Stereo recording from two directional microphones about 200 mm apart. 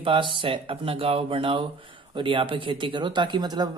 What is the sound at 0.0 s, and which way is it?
Speech, 25° right (ahead or behind).